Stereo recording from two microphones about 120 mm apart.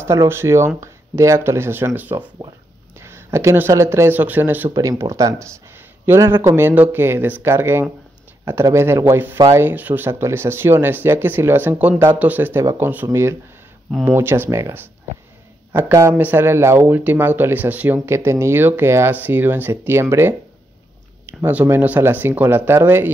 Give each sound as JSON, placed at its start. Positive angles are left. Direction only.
{"t": 0.0, "sound": "a man's voice", "side_deg": -20}
{"t": 4.7, "sound": "speech", "side_deg": -25}
{"t": 21.5, "sound": "speech", "side_deg": -15}